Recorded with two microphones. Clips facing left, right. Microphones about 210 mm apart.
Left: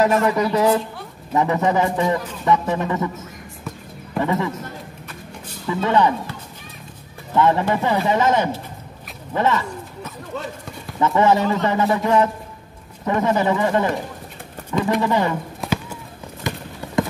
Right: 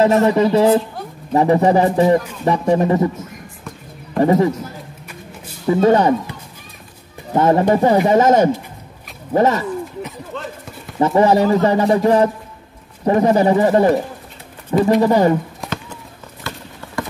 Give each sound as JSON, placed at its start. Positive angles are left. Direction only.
{"t": 0.0, "sound": "a man's voice", "side_deg": -35}
{"t": 4.2, "sound": "a man's voice", "side_deg": -40}
{"t": 5.7, "sound": "a man's voice", "side_deg": -40}
{"t": 7.3, "sound": "a man's voice", "side_deg": -40}
{"t": 11.0, "sound": "a man's voice", "side_deg": -35}
{"t": 15.6, "sound": "horse", "side_deg": 10}
{"t": 16.5, "sound": "clip-clop", "side_deg": 15}